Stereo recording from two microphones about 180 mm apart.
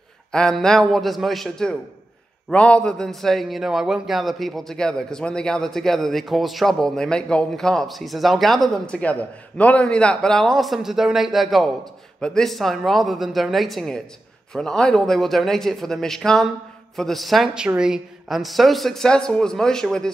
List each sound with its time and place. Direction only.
0.3 s a man's voice: 5° left (ahead or behind)